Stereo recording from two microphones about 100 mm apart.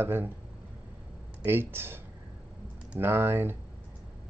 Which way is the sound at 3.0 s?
25° right (ahead or behind).